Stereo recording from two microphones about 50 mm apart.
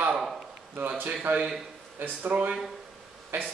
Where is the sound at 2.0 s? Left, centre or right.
Right.